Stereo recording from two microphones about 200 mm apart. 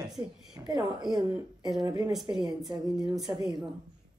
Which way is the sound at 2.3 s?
Centre (ahead or behind).